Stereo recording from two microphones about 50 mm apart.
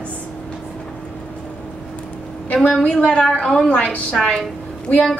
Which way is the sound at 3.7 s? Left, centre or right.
Left.